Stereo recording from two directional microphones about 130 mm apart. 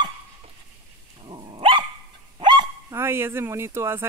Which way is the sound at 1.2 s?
35° right (ahead or behind).